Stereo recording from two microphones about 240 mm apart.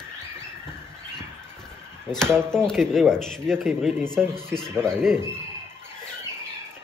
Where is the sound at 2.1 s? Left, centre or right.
Centre.